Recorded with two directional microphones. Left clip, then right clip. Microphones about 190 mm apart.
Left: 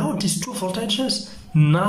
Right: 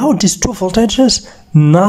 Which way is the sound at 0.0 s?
45° right (ahead or behind).